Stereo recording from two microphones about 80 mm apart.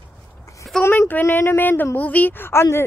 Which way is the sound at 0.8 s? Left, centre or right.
Left.